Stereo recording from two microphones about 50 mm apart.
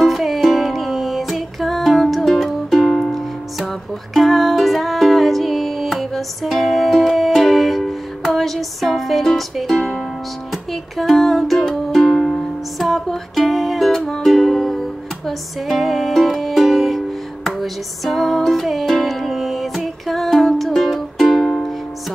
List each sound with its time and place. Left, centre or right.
0.0 s music: centre
8.5 s speech: centre
10.7 s music: centre
12.7 s music: centre